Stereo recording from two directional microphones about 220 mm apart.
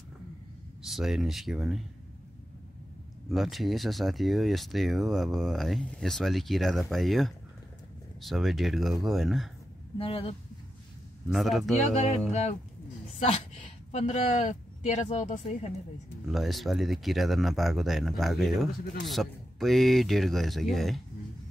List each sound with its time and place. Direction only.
0.8 s speech: centre (ahead or behind)
3.3 s speech: centre (ahead or behind)
9.9 s speech: 25° left (ahead or behind)
11.3 s speech: centre (ahead or behind)
11.9 s speech: 30° left (ahead or behind)
16.3 s speech: centre (ahead or behind)